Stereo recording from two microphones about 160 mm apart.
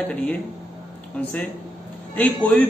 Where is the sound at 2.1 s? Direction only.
10° left (ahead or behind).